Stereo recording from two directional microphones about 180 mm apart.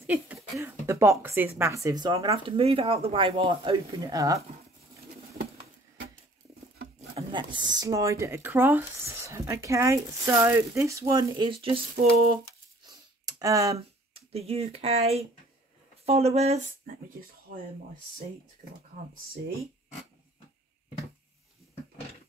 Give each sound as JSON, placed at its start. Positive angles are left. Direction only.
{"t": 0.0, "sound": "speech", "side_deg": -10}
{"t": 7.2, "sound": "speech", "side_deg": -25}
{"t": 12.8, "sound": "a sound", "side_deg": -20}
{"t": 13.7, "sound": "speech", "side_deg": -35}